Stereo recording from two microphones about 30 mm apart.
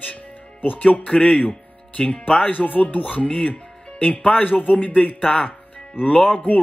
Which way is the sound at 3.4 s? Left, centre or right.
Left.